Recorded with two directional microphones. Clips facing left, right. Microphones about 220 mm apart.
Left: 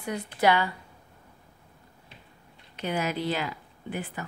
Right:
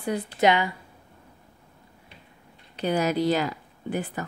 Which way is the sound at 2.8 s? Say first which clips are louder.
Right 6 dB; 40° right (ahead or behind).